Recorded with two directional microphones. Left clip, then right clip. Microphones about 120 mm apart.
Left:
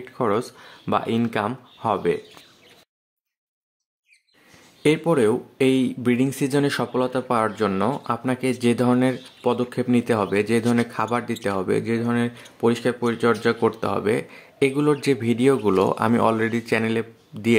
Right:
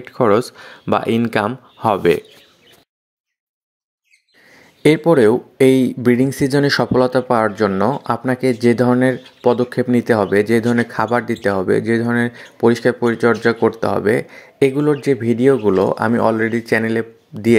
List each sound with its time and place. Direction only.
0.0 s speech: 45° right (ahead or behind)
4.8 s speech: 40° right (ahead or behind)
7.2 s speech: 35° right (ahead or behind)